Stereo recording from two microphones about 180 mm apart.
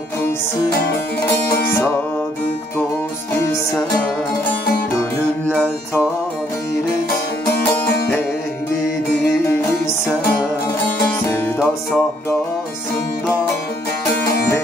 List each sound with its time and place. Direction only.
11.2 s music: 10° left (ahead or behind)
14.2 s music: 60° left (ahead or behind)